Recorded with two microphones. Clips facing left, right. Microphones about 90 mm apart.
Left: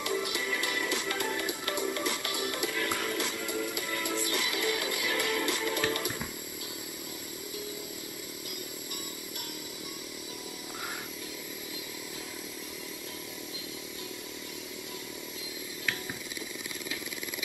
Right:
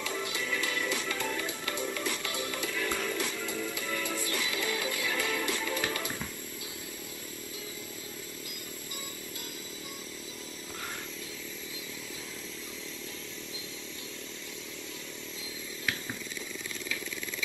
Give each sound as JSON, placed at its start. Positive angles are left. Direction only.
{"t": 0.0, "sound": "music", "side_deg": 15}